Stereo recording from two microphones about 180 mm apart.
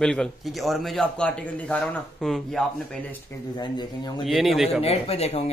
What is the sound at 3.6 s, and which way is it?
Speech, 25° left (ahead or behind).